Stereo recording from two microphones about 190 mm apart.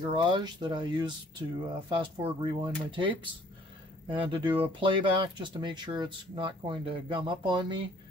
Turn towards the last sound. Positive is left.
turn(degrees=-25)  # may be behind; listen again after turning